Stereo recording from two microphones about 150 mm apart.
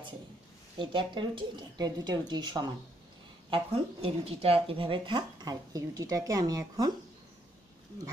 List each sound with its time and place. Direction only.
0.7 s speech: 30° right (ahead or behind)